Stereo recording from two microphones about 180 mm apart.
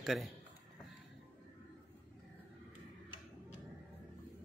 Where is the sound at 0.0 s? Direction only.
Centre (ahead or behind).